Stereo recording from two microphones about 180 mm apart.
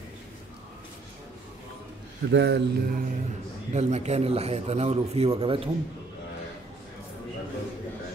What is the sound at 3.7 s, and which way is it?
A man's voice, 40° right (ahead or behind).